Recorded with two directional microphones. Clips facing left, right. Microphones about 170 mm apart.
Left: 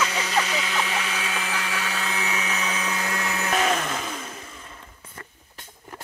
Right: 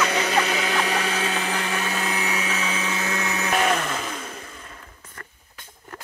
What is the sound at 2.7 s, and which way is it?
Blender, 25° right (ahead or behind).